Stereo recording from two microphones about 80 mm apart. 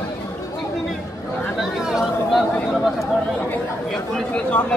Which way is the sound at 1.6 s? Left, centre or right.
Centre.